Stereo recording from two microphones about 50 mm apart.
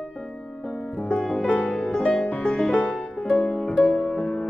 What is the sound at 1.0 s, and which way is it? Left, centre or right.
Music, left.